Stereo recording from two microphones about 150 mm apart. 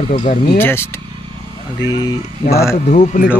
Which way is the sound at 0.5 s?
15° left (ahead or behind).